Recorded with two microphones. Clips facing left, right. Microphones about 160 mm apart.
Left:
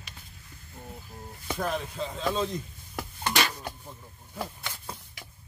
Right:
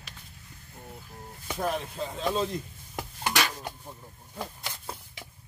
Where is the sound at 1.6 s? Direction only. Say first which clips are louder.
Right 1 dB; 5° right (ahead or behind).